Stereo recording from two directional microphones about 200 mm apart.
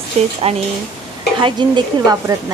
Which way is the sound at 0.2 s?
35° right (ahead or behind).